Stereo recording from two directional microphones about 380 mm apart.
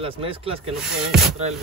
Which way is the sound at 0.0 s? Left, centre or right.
Centre.